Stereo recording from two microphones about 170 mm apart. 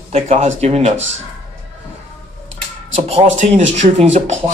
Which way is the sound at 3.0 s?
40° right (ahead or behind).